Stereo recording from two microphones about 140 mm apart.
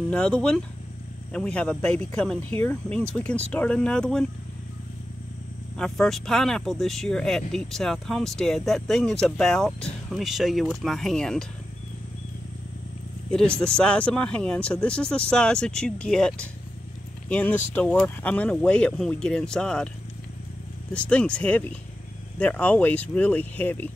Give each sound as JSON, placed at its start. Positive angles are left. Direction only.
{"t": 0.1, "sound": "speech", "side_deg": 5}
{"t": 5.8, "sound": "speech", "side_deg": 5}
{"t": 13.3, "sound": "speech", "side_deg": 5}
{"t": 20.9, "sound": "speech", "side_deg": 10}